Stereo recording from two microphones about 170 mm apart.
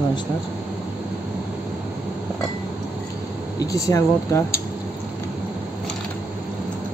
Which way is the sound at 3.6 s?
20° left (ahead or behind).